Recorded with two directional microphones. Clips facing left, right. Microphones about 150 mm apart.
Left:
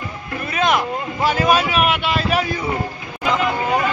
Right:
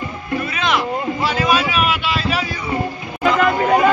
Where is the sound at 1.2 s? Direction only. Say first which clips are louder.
Left 3 dB; 45° left (ahead or behind).